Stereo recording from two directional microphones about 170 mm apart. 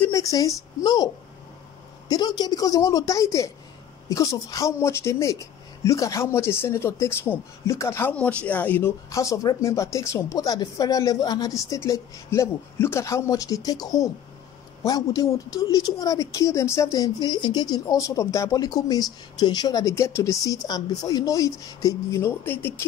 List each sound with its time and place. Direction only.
0.0 s speech: 20° left (ahead or behind)